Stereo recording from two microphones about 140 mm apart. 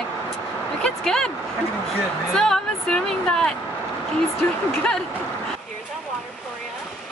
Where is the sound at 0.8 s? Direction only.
5° left (ahead or behind).